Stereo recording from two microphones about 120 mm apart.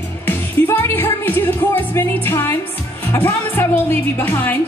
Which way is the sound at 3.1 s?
15° left (ahead or behind).